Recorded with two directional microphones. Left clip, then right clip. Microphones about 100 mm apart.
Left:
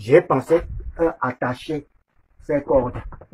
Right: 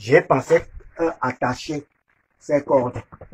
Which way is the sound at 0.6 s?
65° left (ahead or behind).